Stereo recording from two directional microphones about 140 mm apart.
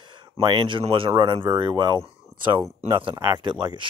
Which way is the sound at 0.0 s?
35° right (ahead or behind).